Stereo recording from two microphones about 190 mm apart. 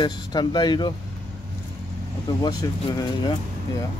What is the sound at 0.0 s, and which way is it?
Speech, 25° left (ahead or behind).